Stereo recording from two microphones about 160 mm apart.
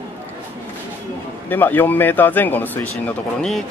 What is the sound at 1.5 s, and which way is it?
Speech, 10° left (ahead or behind).